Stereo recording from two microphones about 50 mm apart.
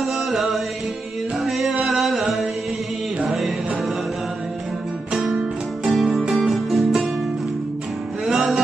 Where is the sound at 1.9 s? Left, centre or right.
Centre.